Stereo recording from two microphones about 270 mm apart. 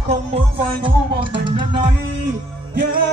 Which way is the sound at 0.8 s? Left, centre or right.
Centre.